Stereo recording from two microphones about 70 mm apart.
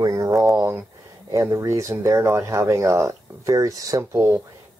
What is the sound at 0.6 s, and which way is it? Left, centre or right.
Speech, right.